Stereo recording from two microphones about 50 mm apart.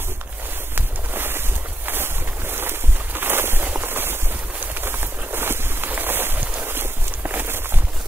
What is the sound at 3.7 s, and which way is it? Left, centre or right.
Firecracker, right.